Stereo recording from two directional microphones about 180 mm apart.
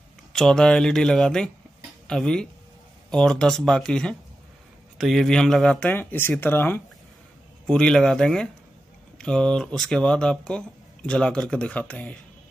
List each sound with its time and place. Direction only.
0.3 s speech: 5° left (ahead or behind)